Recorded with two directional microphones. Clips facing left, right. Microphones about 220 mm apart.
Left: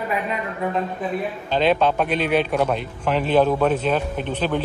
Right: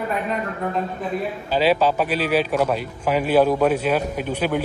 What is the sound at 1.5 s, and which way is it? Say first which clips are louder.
A man's voice: even; 5° right (ahead or behind).